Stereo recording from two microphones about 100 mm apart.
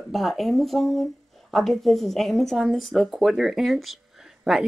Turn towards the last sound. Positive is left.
turn(degrees=-5)  # may be behind; listen again after turning